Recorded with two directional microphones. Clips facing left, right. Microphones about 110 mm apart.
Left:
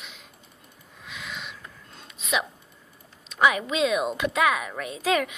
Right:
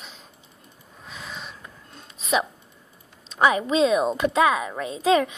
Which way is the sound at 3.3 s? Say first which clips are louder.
Right 2 dB; 30° right (ahead or behind).